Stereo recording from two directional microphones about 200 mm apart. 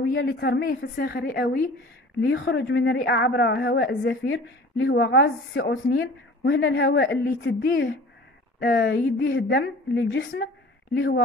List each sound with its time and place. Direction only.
0.1 s a woman's voice: 50° left (ahead or behind)
2.2 s a woman's voice: 60° left (ahead or behind)